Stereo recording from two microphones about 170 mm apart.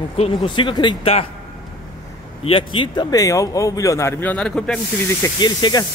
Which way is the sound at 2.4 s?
30° left (ahead or behind).